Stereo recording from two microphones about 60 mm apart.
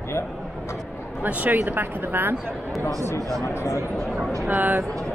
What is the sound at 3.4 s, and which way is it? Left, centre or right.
Speech, left.